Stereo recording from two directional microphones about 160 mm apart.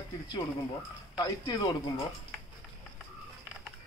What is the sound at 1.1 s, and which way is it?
Speech, 25° left (ahead or behind).